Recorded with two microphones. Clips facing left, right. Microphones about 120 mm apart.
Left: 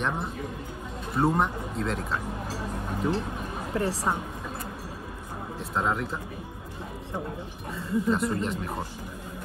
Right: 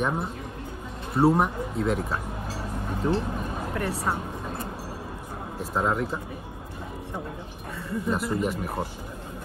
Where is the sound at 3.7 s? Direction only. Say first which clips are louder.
Left 3 dB; 30° left (ahead or behind).